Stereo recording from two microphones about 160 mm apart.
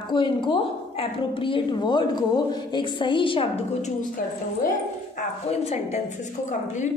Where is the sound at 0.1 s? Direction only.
30° left (ahead or behind).